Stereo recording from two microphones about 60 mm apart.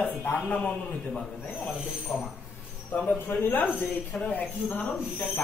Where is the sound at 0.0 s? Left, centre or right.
Left.